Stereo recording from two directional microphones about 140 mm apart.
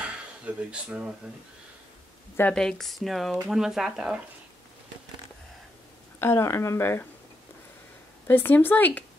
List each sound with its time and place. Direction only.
0.0 s a sound: 5° right (ahead or behind)
2.5 s speech: 5° left (ahead or behind)
6.1 s speech: 20° left (ahead or behind)
8.3 s speech: 15° left (ahead or behind)